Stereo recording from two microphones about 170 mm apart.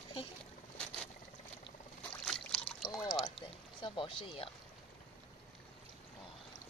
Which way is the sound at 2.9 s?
25° left (ahead or behind).